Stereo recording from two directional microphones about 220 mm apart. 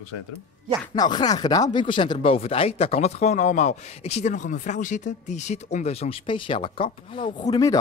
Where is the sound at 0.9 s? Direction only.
20° left (ahead or behind).